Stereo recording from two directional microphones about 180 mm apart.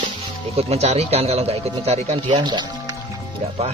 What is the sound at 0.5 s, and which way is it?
Speech, 35° right (ahead or behind).